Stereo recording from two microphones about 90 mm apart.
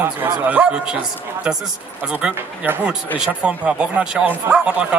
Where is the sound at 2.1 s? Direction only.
10° right (ahead or behind).